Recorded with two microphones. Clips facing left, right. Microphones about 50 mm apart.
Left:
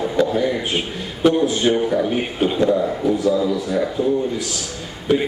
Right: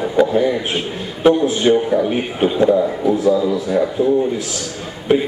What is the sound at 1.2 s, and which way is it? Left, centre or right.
Speech, right.